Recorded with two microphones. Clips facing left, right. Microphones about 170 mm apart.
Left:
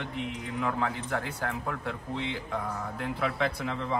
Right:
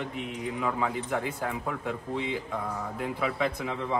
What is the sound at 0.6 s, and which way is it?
A man's voice, 10° right (ahead or behind).